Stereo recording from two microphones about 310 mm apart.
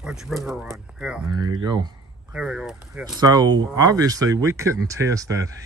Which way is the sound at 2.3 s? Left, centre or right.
Centre.